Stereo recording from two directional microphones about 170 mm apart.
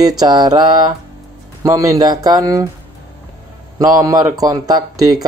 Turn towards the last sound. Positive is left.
turn(degrees=-20)  # may be behind; listen again after turning